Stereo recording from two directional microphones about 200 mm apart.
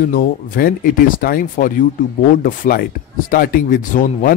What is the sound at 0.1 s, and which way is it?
Speech, 45° left (ahead or behind).